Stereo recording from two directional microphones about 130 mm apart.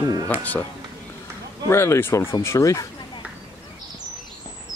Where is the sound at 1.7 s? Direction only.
20° left (ahead or behind).